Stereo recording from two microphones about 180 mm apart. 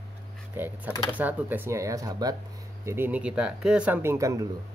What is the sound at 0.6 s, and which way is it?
Speech, 10° right (ahead or behind).